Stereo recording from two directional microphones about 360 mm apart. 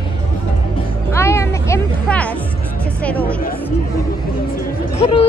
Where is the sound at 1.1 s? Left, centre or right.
Centre.